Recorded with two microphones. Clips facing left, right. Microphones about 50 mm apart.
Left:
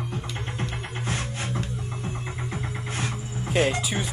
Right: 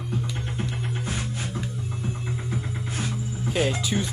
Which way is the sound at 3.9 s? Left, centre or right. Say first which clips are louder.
Right 3 dB; centre.